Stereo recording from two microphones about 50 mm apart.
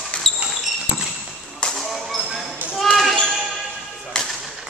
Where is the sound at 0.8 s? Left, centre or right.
Centre.